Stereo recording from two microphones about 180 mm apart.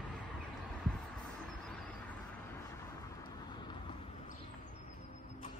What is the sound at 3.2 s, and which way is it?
Vehicle, 25° left (ahead or behind).